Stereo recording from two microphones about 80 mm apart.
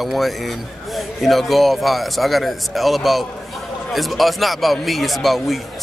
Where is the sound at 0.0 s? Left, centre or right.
Centre.